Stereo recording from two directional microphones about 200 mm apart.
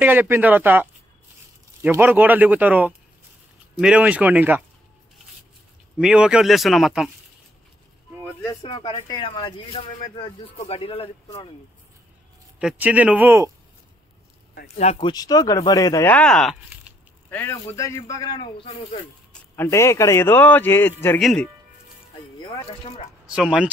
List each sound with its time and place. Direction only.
0.0 s speech: 10° right (ahead or behind)
5.9 s speech: 5° right (ahead or behind)
8.6 s speech: 25° left (ahead or behind)
12.5 s speech: 5° right (ahead or behind)
15.0 s speech: 20° left (ahead or behind); by 16.9 s centre (ahead or behind)
17.3 s speech: 10° left (ahead or behind)
21.2 s speech: centre (ahead or behind)
23.3 s speech: 5° right (ahead or behind)